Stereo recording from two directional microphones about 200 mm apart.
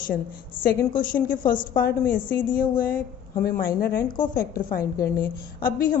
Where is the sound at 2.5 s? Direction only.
45° left (ahead or behind).